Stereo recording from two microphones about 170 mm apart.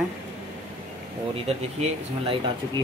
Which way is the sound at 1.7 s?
35° right (ahead or behind).